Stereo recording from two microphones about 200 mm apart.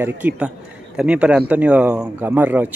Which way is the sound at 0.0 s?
10° right (ahead or behind).